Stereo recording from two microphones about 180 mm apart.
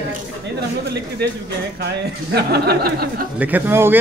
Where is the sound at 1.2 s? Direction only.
65° right (ahead or behind).